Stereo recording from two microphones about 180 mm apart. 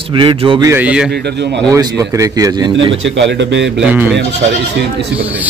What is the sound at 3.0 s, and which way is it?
Speech, 80° right.